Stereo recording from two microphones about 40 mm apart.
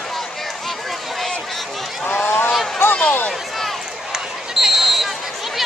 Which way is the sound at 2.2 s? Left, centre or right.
Left.